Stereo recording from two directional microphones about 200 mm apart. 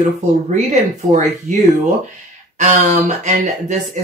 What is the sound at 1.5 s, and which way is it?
Speech, 35° right (ahead or behind).